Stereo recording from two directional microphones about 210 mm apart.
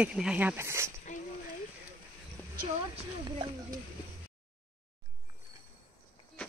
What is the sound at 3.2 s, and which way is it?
Speech, 20° right (ahead or behind).